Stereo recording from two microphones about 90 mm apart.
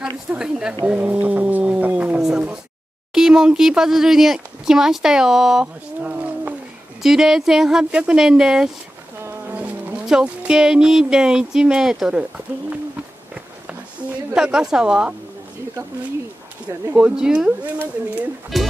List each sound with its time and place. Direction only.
0.3 s speech: 10° right (ahead or behind)
6.0 s roaring cats: 15° right (ahead or behind)
7.0 s speech: 5° right (ahead or behind)
9.2 s a sound: 20° right (ahead or behind)
10.0 s speech: 10° right (ahead or behind)
14.3 s speech: 10° right (ahead or behind)
16.6 s speech: 15° right (ahead or behind)